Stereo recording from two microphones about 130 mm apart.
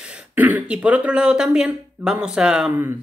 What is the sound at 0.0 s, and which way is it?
Speech, 10° right (ahead or behind).